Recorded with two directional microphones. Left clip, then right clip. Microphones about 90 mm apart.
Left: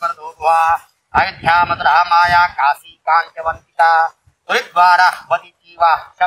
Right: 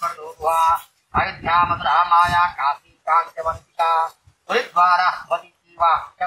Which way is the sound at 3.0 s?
15° left (ahead or behind).